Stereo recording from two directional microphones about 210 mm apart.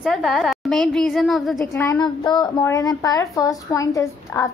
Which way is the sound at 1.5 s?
15° left (ahead or behind).